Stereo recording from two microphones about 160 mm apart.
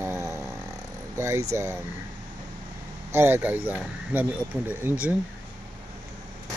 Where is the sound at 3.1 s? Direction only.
15° right (ahead or behind).